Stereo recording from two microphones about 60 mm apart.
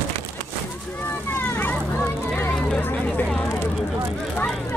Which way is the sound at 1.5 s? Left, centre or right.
Left.